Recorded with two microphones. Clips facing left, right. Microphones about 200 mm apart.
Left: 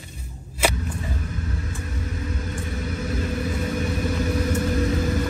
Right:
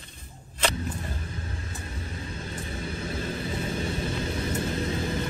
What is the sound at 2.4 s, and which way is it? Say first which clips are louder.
Vehicle: left 5 dB; 30° right (ahead or behind).